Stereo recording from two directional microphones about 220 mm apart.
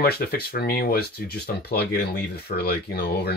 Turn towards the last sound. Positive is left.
turn(degrees=45)  # may be behind; listen again after turning